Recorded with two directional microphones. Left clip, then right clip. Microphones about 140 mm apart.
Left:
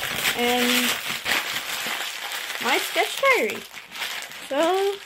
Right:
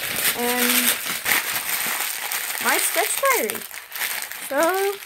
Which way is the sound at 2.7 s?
25° left (ahead or behind).